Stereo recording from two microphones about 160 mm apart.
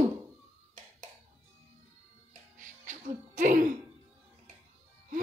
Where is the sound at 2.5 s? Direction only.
55° right (ahead or behind).